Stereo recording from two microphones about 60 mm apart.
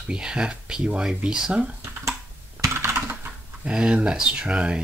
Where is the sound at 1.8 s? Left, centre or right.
Right.